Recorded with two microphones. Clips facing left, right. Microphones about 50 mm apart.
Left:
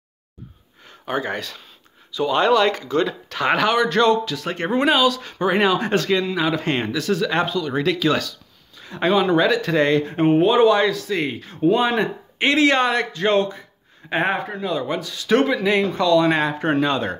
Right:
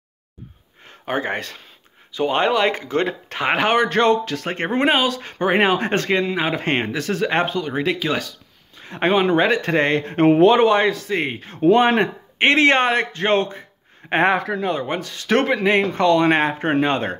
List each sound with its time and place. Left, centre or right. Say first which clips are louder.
0.8 s speech: right 1 dB; right
7.7 s speech: left 5 dB; right
8.7 s speech: even; right
10.1 s speech: right 5 dB; right
10.6 s speech: even; right
11.6 s speech: right 3 dB; right
14.1 s speech: right 4 dB; right
14.7 s speech: right 1 dB; right